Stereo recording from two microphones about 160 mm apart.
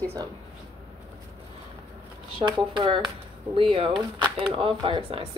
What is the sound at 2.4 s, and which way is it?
Speech, 30° right (ahead or behind).